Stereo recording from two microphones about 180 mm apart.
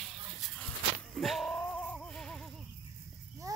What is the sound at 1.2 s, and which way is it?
Music, centre (ahead or behind).